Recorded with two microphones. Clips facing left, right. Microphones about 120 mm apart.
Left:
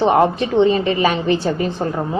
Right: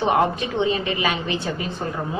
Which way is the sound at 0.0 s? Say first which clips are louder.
Left 5 dB; 30° left (ahead or behind).